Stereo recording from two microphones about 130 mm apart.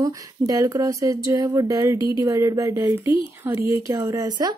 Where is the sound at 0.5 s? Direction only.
25° right (ahead or behind).